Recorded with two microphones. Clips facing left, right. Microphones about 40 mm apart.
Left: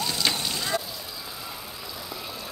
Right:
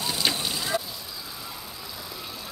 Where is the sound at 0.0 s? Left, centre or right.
Centre.